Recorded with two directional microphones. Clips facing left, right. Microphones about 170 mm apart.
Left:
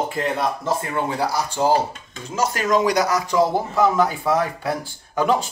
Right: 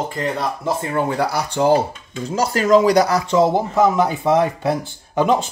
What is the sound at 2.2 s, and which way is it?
Speech, 35° right (ahead or behind).